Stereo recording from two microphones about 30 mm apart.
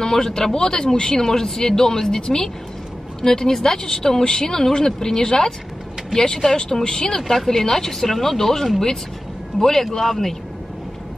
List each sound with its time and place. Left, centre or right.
0.0 s a woman's voice: centre
7.2 s speech: centre